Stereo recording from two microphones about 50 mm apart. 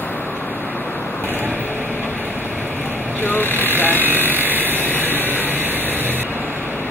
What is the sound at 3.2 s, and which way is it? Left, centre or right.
Vehicle, left.